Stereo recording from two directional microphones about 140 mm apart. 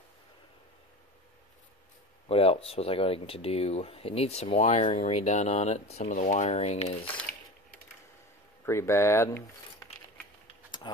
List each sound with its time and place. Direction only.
2.2 s speech: 45° left (ahead or behind)
6.1 s speech: 60° left (ahead or behind)
8.6 s speech: 20° left (ahead or behind)